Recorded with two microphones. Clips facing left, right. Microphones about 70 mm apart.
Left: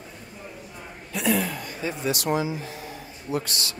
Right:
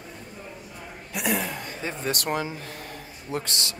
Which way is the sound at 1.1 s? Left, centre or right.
Centre.